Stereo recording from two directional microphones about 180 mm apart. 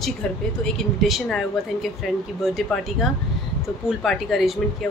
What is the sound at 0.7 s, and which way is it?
Speech, centre (ahead or behind).